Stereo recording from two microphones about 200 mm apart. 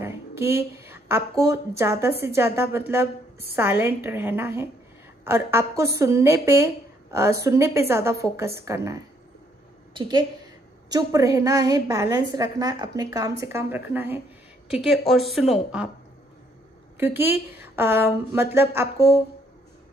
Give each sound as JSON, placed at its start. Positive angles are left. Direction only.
{"t": 0.0, "sound": "a woman's voice", "side_deg": -10}
{"t": 16.9, "sound": "a woman's voice", "side_deg": -10}